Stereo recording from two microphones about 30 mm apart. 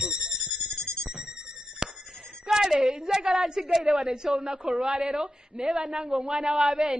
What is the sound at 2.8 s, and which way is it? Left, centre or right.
Speech, right.